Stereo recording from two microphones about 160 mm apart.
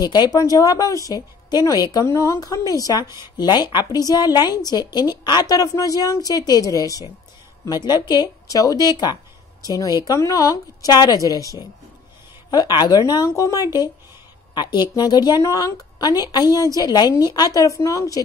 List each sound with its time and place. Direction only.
0.0 s a woman's voice: 25° left (ahead or behind)